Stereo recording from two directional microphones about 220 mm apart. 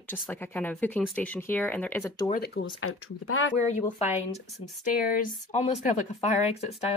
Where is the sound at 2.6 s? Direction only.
65° left (ahead or behind).